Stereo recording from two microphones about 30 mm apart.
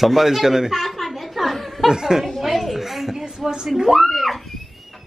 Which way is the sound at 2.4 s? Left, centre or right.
Centre.